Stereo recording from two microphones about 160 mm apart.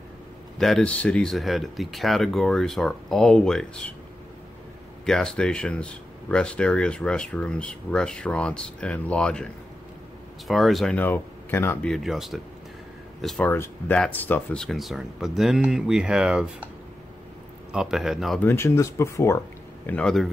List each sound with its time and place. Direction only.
0.6 s speech: 5° left (ahead or behind)
5.0 s speech: 5° left (ahead or behind)
11.9 s speech: centre (ahead or behind)
13.5 s speech: 15° left (ahead or behind); by 16.6 s 5° right (ahead or behind)
17.7 s speech: 5° right (ahead or behind)
18.4 s speech: 15° left (ahead or behind)
19.9 s speech: 5° left (ahead or behind)